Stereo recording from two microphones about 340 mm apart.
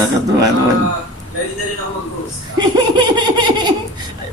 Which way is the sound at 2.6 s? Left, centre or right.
Centre.